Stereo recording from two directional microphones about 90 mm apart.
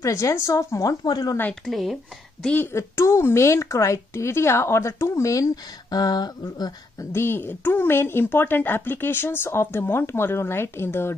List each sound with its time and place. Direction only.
0.0 s a woman's voice: 35° left (ahead or behind)
1.0 s speech: 50° left (ahead or behind)
1.5 s speech: centre (ahead or behind)
2.6 s speech: 30° left (ahead or behind)